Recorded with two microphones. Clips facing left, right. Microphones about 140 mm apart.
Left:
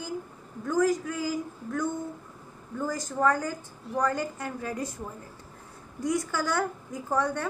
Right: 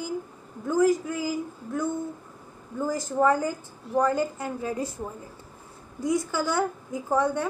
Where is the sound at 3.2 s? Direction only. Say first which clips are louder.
Right 3 dB; 10° right (ahead or behind).